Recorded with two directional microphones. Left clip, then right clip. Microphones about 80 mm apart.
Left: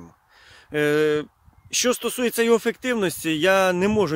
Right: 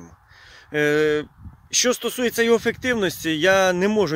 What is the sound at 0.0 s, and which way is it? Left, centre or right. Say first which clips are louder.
Speech: right 2 dB; left.